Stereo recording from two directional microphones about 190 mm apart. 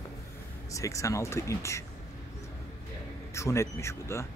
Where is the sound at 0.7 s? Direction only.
15° left (ahead or behind).